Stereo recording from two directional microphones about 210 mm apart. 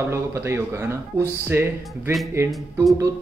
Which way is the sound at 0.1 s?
10° right (ahead or behind).